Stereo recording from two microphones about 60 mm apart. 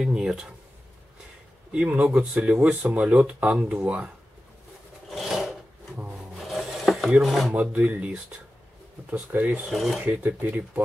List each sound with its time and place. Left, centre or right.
0.0 s speech: centre
1.7 s speech: centre
5.1 s filing: centre
6.3 s wood: centre
7.1 s chopping: centre
7.5 s speech: right
9.7 s chopping: centre
10.0 s speech: right